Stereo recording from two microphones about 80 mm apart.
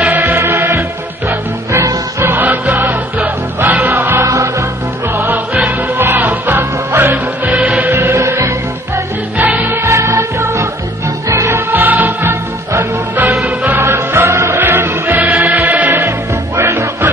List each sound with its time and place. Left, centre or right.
0.0 s music: right
2.3 s music: right
4.2 s music: right
5.1 s music: right
9.8 s music: right
11.2 s music: right